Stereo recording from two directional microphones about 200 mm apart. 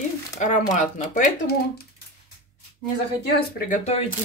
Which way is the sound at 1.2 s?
50° left (ahead or behind).